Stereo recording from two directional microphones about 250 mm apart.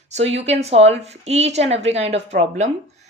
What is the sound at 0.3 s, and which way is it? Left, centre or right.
Speech, right.